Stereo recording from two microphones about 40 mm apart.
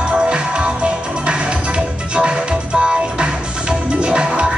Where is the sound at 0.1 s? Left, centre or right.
Right.